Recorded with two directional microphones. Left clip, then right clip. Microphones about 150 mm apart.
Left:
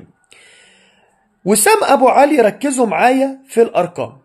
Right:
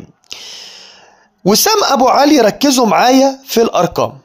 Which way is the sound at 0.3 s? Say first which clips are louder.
Right 17 dB; 35° right (ahead or behind).